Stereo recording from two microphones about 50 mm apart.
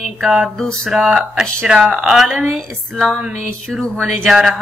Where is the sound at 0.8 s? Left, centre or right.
Centre.